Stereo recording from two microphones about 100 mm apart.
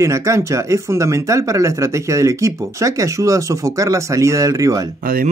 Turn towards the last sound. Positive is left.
turn(degrees=-35)  # may be behind; listen again after turning